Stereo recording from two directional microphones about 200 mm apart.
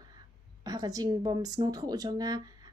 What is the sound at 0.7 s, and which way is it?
A woman's voice, 20° right (ahead or behind).